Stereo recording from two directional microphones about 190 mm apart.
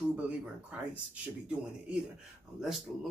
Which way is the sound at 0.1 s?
5° right (ahead or behind).